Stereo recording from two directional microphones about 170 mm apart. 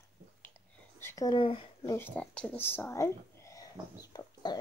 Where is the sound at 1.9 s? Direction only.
10° left (ahead or behind).